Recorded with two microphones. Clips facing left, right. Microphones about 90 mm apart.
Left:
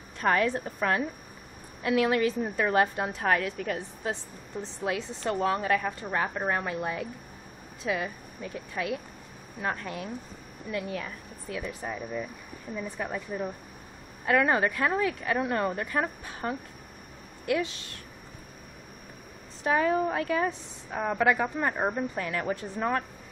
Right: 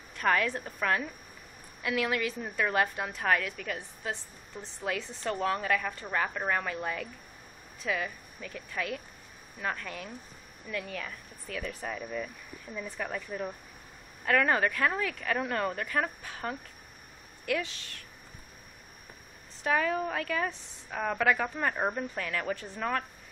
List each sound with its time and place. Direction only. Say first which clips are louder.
0.2 s a woman's voice: left 3 dB; 30° left (ahead or behind)
19.6 s a woman's voice: left 4 dB; 25° left (ahead or behind)
22.1 s a woman's voice: left 3 dB; 25° left (ahead or behind)